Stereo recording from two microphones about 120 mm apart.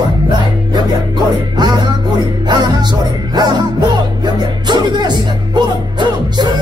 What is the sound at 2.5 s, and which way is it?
Music, 35° right (ahead or behind).